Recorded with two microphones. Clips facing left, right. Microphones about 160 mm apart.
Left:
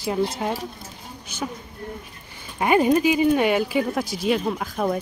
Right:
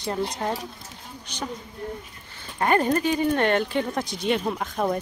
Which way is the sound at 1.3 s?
5° left (ahead or behind).